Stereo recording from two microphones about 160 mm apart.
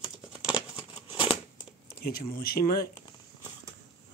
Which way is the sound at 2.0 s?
65° left (ahead or behind).